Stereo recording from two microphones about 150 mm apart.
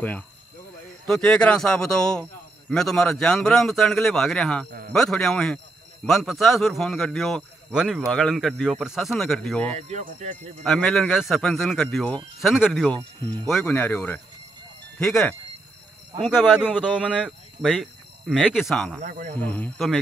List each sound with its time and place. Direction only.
1.0 s a man's voice: 5° left (ahead or behind)
9.7 s speech: 45° right (ahead or behind)
10.6 s a man's voice: centre (ahead or behind)
19.0 s speech: 60° right (ahead or behind)
19.3 s speech: 10° left (ahead or behind)